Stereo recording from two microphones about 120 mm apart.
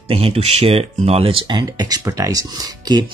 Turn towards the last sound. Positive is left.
turn(degrees=-35)  # may be behind; listen again after turning